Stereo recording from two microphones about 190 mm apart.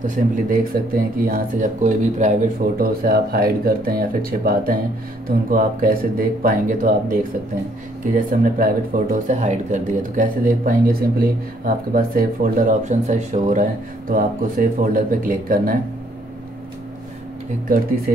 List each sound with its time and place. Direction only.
0.0 s speech: 45° right (ahead or behind)